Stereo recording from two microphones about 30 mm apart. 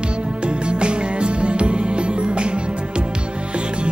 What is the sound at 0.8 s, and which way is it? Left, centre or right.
Music, right.